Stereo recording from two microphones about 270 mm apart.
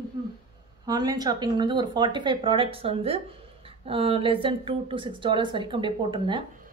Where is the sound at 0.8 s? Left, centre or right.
Centre.